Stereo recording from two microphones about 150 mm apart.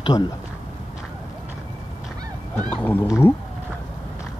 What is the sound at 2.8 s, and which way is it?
Speech, 10° left (ahead or behind).